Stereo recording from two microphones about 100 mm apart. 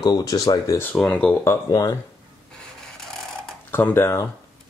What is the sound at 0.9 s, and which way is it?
Speech, 10° left (ahead or behind).